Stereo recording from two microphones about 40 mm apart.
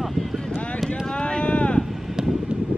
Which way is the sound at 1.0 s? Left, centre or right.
Left.